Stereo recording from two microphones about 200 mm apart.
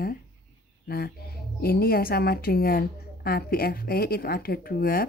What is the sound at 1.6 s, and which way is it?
A woman's voice, 50° left (ahead or behind).